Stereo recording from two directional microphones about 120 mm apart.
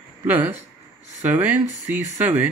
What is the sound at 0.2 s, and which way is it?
Speech, 15° right (ahead or behind).